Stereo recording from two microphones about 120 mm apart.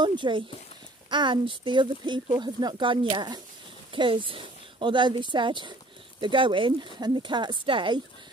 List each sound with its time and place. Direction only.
0.0 s speech: 40° right (ahead or behind)